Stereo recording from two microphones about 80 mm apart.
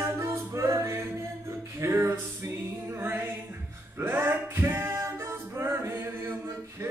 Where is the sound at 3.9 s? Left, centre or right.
Right.